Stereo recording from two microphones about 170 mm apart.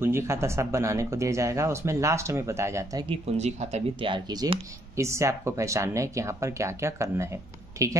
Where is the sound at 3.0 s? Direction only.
35° right (ahead or behind).